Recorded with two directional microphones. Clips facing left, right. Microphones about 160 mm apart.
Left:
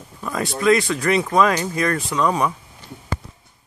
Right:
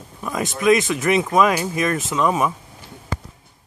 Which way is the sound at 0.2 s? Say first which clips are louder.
Even; 15° right (ahead or behind).